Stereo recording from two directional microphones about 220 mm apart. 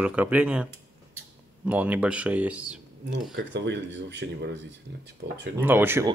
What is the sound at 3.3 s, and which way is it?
Speech, 55° right (ahead or behind).